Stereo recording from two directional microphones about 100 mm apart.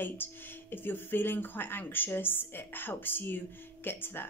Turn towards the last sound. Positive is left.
turn(degrees=20)  # may be behind; listen again after turning